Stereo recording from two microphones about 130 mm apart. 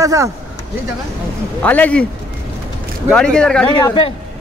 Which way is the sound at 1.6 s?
10° left (ahead or behind).